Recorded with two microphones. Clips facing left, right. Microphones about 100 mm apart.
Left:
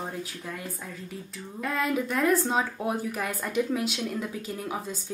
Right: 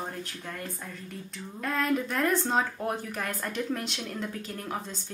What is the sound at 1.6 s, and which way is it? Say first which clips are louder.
Speech: even; 5° left (ahead or behind).